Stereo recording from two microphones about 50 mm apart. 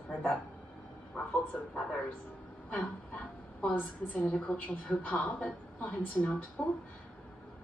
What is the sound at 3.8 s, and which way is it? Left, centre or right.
A woman's voice, left.